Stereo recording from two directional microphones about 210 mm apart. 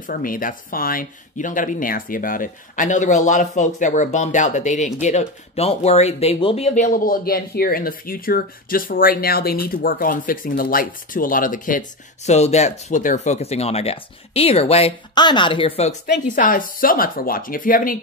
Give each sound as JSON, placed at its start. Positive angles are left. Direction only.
{"t": 0.1, "sound": "speech", "side_deg": 40}
{"t": 16.1, "sound": "speech", "side_deg": 40}